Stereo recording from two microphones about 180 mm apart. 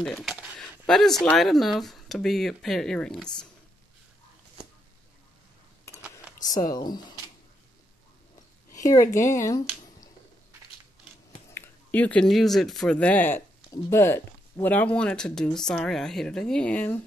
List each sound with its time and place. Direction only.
0.0 s speech: centre (ahead or behind)
6.4 s speech: 20° left (ahead or behind)
8.7 s speech: 20° left (ahead or behind)
11.5 s speech: 10° left (ahead or behind)